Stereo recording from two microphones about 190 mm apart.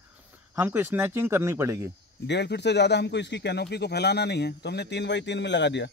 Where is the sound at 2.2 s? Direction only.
65° left (ahead or behind).